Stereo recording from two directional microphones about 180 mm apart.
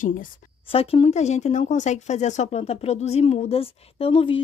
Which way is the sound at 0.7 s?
30° left (ahead or behind).